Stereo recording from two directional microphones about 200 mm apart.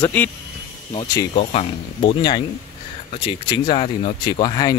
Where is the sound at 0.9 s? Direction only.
20° left (ahead or behind).